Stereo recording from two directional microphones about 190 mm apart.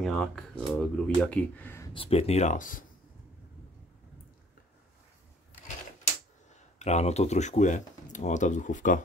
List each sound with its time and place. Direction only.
0.0 s speech: 5° left (ahead or behind)
2.0 s speech: 30° left (ahead or behind)
6.8 s speech: 35° left (ahead or behind)